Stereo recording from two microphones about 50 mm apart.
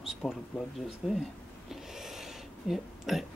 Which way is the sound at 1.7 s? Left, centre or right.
Centre.